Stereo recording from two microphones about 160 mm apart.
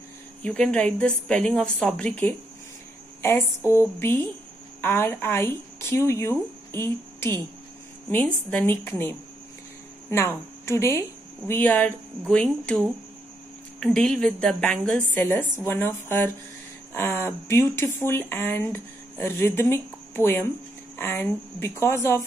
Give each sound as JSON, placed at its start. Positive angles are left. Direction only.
{"t": 0.4, "sound": "a woman's voice", "side_deg": 5}